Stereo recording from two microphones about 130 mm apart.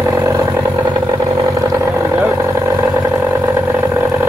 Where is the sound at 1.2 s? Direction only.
30° right (ahead or behind).